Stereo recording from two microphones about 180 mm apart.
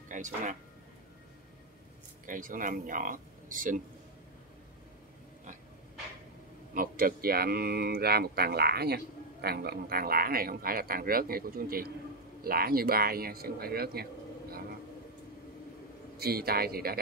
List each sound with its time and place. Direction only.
0.1 s speech: 45° right (ahead or behind)
2.2 s speech: 50° right (ahead or behind)
6.7 s speech: 50° right (ahead or behind)
16.2 s speech: 60° right (ahead or behind)